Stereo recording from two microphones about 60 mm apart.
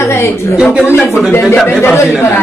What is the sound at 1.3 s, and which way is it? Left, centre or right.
A woman's voice, left.